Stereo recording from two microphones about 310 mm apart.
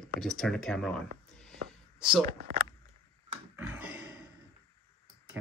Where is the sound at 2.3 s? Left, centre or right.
Right.